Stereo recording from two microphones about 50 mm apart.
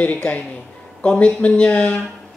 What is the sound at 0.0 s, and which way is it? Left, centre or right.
Speech, left.